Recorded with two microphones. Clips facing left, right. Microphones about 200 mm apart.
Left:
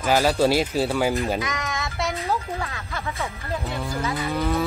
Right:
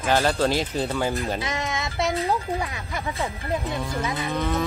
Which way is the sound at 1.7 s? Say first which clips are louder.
Right 2 dB; 20° right (ahead or behind).